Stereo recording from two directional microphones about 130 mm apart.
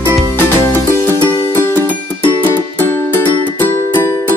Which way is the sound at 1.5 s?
15° left (ahead or behind).